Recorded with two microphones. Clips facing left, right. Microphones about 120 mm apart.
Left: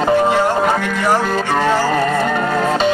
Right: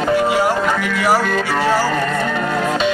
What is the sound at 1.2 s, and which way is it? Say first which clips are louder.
Speech: left 1 dB; 35° left (ahead or behind).